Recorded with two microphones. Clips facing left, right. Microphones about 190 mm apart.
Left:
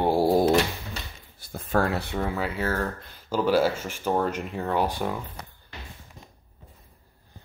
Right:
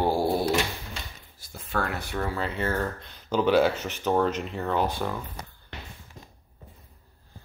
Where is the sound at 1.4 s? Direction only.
60° left (ahead or behind).